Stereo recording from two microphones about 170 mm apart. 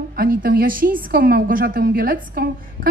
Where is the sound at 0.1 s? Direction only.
60° right (ahead or behind).